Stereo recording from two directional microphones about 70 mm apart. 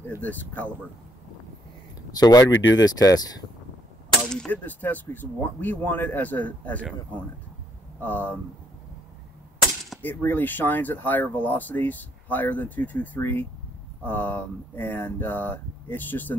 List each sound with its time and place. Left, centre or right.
0.2 s speech: left
2.1 s speech: left
4.5 s speech: left
8.0 s speech: left
10.0 s speech: left